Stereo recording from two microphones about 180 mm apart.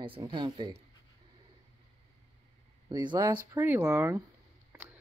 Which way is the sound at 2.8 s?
25° right (ahead or behind).